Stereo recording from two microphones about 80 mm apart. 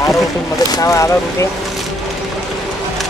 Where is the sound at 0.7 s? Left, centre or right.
Left.